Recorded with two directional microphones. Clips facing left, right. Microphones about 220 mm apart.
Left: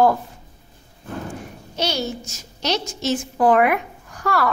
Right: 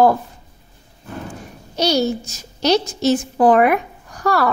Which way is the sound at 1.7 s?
40° right (ahead or behind).